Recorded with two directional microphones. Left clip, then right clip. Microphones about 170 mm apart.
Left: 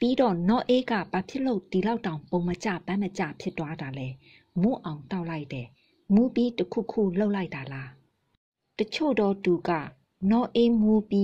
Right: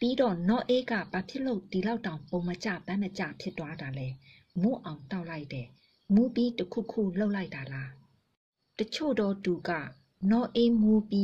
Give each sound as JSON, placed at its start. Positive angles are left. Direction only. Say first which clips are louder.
{"t": 0.0, "sound": "a woman's voice", "louder": "left 4 dB", "side_deg": 30}